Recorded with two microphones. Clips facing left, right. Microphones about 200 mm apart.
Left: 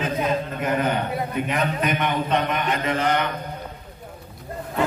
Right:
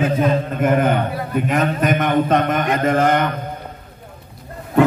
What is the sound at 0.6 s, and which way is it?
A man's voice, 50° right (ahead or behind).